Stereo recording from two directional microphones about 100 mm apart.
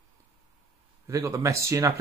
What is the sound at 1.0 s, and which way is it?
Speech, 30° right (ahead or behind).